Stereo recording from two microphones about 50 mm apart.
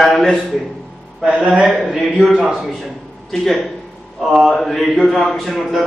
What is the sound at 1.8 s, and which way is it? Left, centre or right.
Speech, centre.